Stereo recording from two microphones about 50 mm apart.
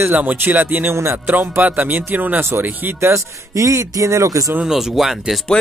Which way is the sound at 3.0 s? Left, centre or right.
Right.